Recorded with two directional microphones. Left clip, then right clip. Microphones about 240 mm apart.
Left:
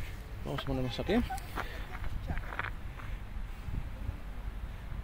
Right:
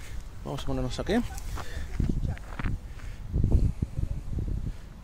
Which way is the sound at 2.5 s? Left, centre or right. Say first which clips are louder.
Left 3 dB; centre.